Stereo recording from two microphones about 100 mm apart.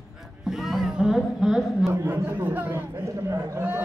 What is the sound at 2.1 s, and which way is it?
Speech, 15° right (ahead or behind).